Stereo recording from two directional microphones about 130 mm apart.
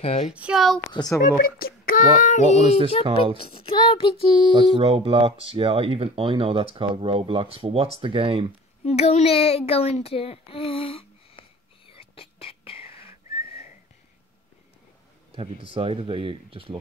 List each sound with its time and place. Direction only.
0.0 s a child's voice: 50° left (ahead or behind)
0.3 s speech: 5° right (ahead or behind)
0.9 s speech: 30° left (ahead or behind)
2.0 s speech: 85° left; by 2.8 s 65° left (ahead or behind)
3.1 s speech: 40° right (ahead or behind)
3.3 s a child's voice: 45° left (ahead or behind)
4.5 s speech: 40° right (ahead or behind)
8.8 s a child's voice: 55° left (ahead or behind)
11.9 s whistling: 45° left (ahead or behind)
15.3 s speech: 45° right (ahead or behind)